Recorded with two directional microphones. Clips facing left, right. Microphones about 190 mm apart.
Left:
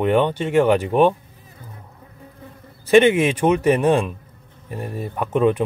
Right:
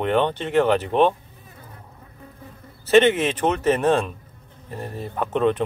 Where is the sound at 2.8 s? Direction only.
10° left (ahead or behind).